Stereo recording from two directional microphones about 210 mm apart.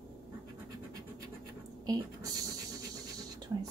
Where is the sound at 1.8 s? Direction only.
15° right (ahead or behind).